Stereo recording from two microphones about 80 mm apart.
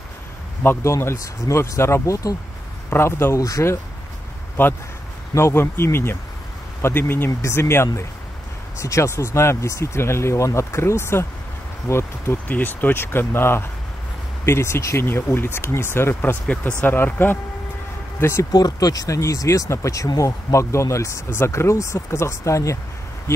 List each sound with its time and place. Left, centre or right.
0.7 s speech: left
2.9 s speech: left
3.3 s speech: left
4.6 s speech: left
16.2 s speech: centre; by 18.5 s left
18.5 s speech: left